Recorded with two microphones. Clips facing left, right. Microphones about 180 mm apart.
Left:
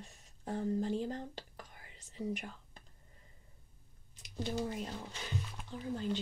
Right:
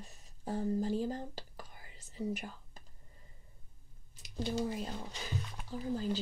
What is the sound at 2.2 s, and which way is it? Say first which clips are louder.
Speech: right 1 dB; 5° right (ahead or behind).